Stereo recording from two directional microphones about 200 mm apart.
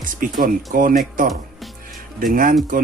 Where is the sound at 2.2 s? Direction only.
45° right (ahead or behind).